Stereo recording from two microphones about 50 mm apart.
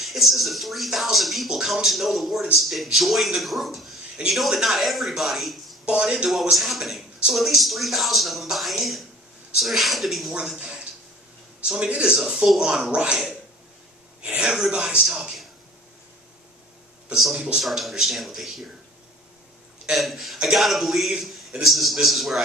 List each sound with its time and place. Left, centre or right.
0.0 s speech: centre
5.9 s a man's voice: centre
6.5 s speech: centre
10.6 s a sound: centre
11.6 s a man's voice: centre
14.5 s a man's voice: centre
17.1 s a man's voice: centre
19.9 s speech: centre